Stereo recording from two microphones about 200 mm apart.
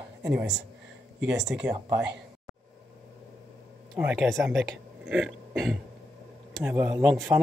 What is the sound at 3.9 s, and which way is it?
Speech, 5° right (ahead or behind).